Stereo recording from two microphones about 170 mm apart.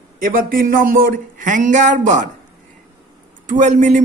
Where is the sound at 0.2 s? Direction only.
55° right (ahead or behind).